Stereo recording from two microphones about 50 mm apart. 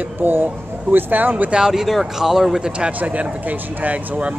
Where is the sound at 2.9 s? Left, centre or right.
Right.